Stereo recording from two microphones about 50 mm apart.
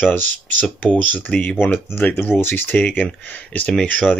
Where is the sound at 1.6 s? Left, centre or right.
Left.